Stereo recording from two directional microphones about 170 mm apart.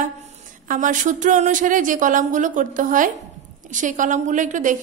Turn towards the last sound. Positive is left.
turn(degrees=-50)  # may be behind; listen again after turning